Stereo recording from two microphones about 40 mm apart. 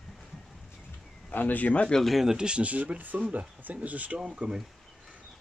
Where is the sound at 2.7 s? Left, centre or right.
Right.